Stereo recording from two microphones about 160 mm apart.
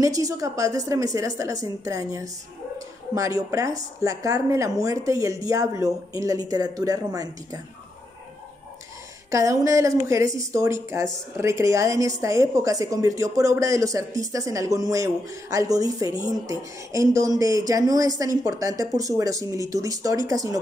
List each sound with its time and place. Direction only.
0.0 s a woman's voice: 20° right (ahead or behind)
9.3 s a woman's voice: 20° right (ahead or behind)